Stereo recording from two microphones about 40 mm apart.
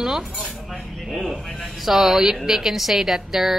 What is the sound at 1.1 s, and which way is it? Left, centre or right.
A woman's voice, centre.